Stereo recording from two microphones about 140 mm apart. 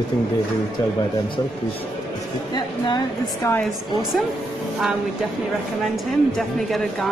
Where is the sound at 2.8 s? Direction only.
30° left (ahead or behind).